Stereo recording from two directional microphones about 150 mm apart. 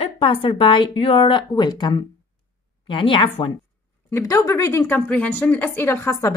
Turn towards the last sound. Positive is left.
turn(degrees=20)  # may be behind; listen again after turning